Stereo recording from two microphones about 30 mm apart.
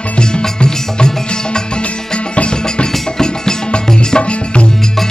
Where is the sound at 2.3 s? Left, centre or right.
Left.